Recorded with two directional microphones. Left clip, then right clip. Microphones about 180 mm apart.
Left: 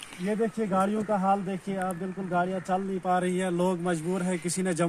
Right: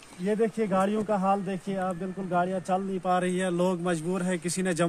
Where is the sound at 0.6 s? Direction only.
20° right (ahead or behind).